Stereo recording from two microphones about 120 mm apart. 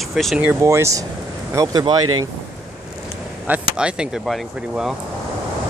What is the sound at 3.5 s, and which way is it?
Speech, 10° right (ahead or behind).